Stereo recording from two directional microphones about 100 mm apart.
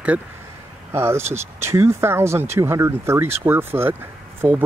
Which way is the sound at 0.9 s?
25° right (ahead or behind).